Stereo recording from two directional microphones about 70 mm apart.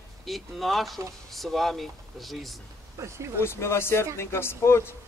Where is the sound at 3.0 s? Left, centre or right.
Right.